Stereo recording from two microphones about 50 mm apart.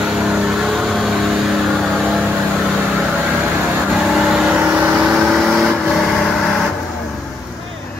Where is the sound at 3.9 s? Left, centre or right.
Centre.